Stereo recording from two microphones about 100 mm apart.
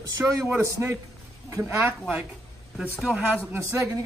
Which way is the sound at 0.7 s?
30° right (ahead or behind).